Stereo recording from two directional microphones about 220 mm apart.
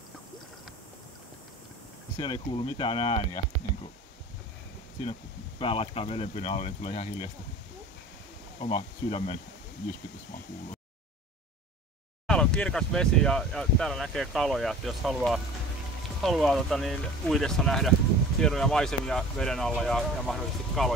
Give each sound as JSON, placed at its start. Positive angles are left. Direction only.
{"t": 2.1, "sound": "speech", "side_deg": 20}
{"t": 5.6, "sound": "speech", "side_deg": 25}
{"t": 8.5, "sound": "speech", "side_deg": 25}
{"t": 12.3, "sound": "speech", "side_deg": 5}